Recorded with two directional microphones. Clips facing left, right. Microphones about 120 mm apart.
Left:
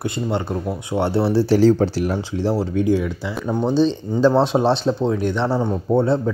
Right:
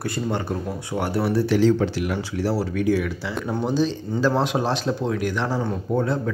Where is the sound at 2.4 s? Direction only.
20° left (ahead or behind).